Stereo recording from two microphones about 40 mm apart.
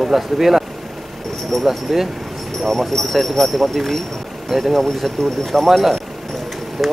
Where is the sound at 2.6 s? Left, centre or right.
Centre.